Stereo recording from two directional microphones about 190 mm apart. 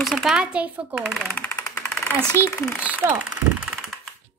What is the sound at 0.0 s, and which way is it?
Speech, centre (ahead or behind).